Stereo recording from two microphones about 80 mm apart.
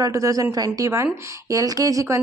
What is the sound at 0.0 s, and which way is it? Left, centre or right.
A woman's voice, right.